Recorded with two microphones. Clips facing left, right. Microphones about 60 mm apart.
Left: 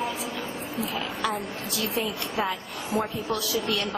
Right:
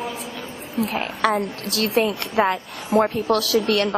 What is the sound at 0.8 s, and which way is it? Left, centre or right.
A woman's voice, right.